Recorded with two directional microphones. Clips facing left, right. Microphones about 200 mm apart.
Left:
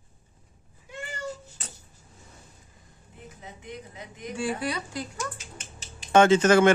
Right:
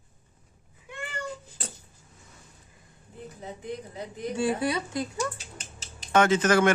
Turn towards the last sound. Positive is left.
turn(degrees=25)  # may be behind; listen again after turning